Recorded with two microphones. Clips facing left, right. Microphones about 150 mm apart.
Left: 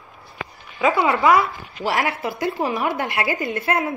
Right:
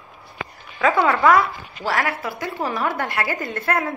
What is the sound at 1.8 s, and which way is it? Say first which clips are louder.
A woman's voice: left 1 dB; 20° left (ahead or behind).